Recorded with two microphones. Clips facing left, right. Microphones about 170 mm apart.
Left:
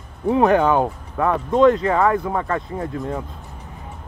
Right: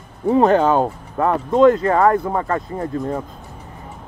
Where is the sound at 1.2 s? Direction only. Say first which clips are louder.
Right 2 dB; 5° right (ahead or behind).